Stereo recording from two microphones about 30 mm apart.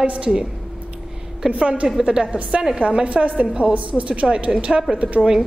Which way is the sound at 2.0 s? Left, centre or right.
Right.